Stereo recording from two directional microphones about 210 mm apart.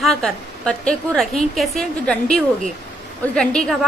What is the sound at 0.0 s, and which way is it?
A woman's voice, centre (ahead or behind).